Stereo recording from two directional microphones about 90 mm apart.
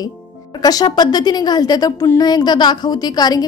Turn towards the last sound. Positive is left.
turn(degrees=50)  # may be behind; listen again after turning